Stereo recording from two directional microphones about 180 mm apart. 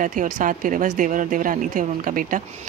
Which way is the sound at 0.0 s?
50° right (ahead or behind).